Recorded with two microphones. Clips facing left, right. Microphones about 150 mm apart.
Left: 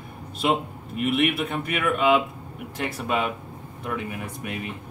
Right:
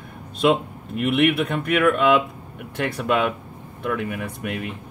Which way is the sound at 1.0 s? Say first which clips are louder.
Right 4 dB; 60° right (ahead or behind).